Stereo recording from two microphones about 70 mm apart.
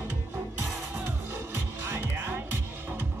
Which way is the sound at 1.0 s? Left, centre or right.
Right.